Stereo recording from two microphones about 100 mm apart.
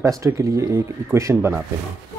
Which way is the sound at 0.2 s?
30° right (ahead or behind).